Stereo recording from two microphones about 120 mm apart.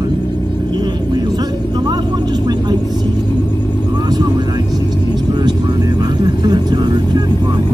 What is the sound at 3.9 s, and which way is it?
Vehicle, 35° right (ahead or behind).